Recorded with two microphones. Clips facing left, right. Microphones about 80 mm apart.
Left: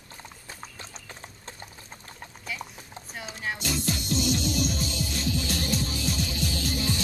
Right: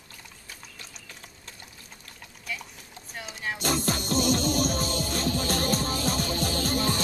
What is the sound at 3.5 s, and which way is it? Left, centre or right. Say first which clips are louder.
Music: right 5 dB; right.